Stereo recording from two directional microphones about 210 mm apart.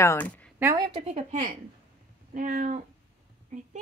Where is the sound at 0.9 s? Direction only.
30° right (ahead or behind).